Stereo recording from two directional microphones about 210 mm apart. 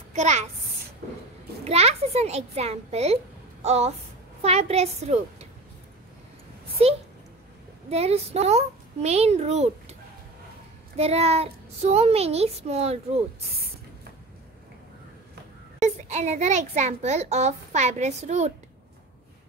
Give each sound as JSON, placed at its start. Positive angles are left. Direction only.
{"t": 0.1, "sound": "a child's voice", "side_deg": -35}
{"t": 1.6, "sound": "a child's voice", "side_deg": -30}
{"t": 7.9, "sound": "a child's voice", "side_deg": -30}
{"t": 11.0, "sound": "a child's voice", "side_deg": -30}
{"t": 15.8, "sound": "a child's voice", "side_deg": -35}